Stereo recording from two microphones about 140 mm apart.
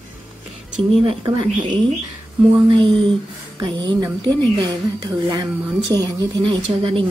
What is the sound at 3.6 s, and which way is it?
A woman's voice, 30° right (ahead or behind).